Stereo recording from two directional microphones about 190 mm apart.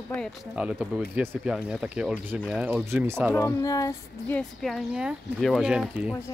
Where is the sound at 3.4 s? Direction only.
15° left (ahead or behind).